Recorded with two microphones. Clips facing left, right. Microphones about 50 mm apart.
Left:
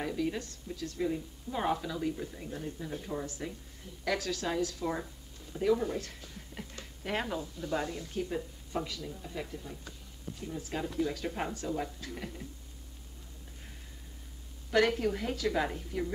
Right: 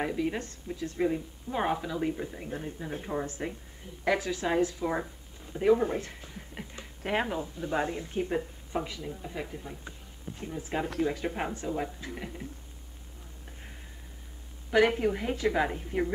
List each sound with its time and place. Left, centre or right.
0.0 s speech: right
14.7 s speech: centre